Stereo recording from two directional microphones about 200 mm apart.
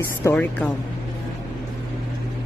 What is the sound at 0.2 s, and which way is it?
Speech, 10° left (ahead or behind).